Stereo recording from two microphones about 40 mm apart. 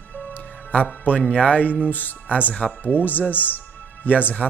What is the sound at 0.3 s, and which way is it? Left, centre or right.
Music, left.